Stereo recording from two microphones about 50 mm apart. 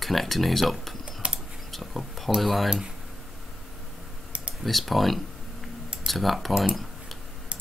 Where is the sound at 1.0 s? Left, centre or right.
Right.